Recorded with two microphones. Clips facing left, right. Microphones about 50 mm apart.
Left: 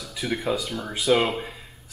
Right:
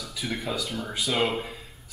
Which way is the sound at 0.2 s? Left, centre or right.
Centre.